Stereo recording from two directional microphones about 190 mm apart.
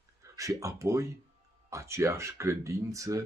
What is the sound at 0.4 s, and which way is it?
Speech, 15° right (ahead or behind).